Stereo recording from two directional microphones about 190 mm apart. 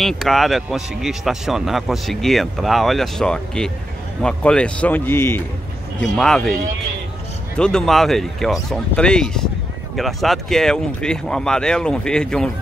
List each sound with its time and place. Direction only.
0.0 s a man's voice: centre (ahead or behind)